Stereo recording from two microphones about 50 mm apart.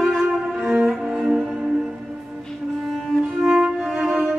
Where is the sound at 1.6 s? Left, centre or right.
Centre.